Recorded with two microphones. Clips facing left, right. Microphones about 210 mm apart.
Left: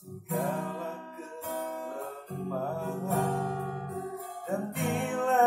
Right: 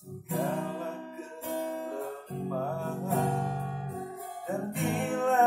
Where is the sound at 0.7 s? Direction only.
15° right (ahead or behind).